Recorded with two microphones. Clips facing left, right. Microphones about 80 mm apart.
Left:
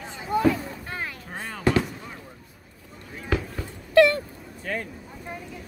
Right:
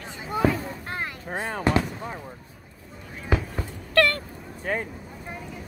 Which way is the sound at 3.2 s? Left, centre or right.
Centre.